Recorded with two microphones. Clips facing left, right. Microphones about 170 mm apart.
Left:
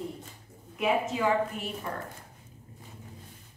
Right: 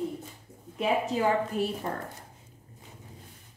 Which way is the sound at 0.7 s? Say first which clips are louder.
Right 1 dB; 35° right (ahead or behind).